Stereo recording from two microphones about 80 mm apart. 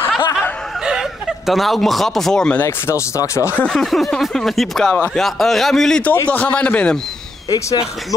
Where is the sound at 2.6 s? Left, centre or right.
Left.